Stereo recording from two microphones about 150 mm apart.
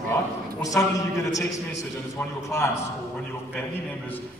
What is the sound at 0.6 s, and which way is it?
Speech, 20° left (ahead or behind).